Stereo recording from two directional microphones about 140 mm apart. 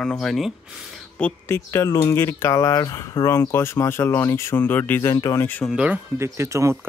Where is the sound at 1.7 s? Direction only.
20° left (ahead or behind).